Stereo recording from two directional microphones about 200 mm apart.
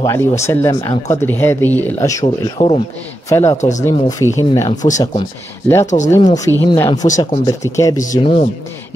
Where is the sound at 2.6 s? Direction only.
30° left (ahead or behind).